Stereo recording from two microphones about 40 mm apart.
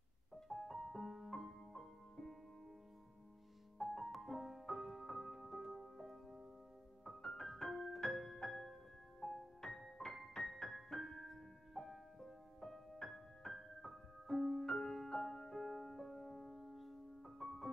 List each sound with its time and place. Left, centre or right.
0.5 s music: centre
3.7 s music: centre